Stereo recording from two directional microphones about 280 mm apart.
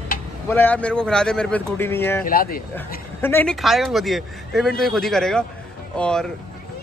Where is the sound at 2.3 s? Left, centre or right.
Left.